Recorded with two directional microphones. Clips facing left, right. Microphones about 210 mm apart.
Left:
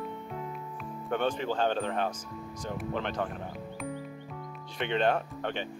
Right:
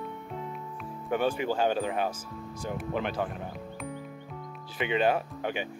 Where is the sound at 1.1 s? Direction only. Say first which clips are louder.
Right 2 dB; 10° right (ahead or behind).